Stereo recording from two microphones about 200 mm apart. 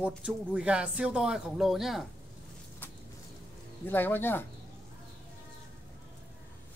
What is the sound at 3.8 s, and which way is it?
Speech, 10° left (ahead or behind).